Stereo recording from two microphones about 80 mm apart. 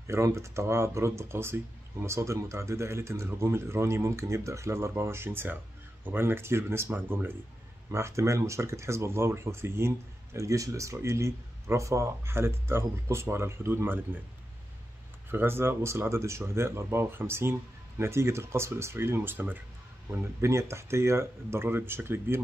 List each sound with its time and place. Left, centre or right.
0.0 s speech: right
7.9 s speech: right
15.3 s speech: right